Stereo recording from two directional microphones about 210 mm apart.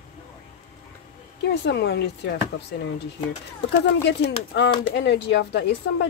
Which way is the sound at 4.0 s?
55° left (ahead or behind).